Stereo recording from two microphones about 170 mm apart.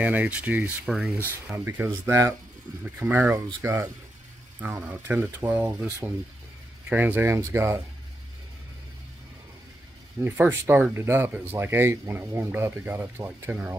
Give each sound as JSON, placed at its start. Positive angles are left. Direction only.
{"t": 0.0, "sound": "speech", "side_deg": -10}
{"t": 1.5, "sound": "speech", "side_deg": -15}
{"t": 10.2, "sound": "speech", "side_deg": -10}